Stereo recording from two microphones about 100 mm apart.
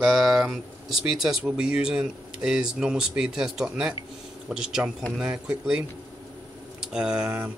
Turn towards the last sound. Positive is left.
turn(degrees=-20)  # may be behind; listen again after turning